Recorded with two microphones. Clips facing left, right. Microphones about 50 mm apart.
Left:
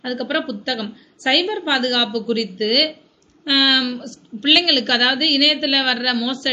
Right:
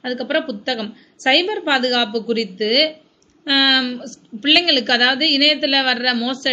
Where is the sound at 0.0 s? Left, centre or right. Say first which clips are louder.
Right 2 dB; right.